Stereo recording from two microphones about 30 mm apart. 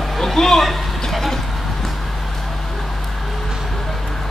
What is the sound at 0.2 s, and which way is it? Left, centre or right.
Speech, centre.